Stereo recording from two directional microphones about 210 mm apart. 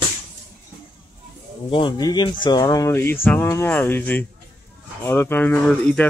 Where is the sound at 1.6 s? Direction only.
25° left (ahead or behind).